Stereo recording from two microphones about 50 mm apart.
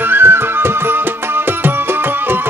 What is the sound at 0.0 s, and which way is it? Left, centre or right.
Music, right.